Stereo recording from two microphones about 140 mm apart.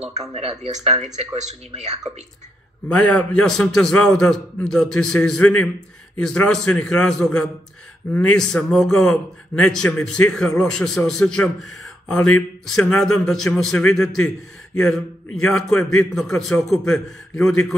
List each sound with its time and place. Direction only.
0.1 s speech: 50° right (ahead or behind)
2.9 s speech: 10° left (ahead or behind)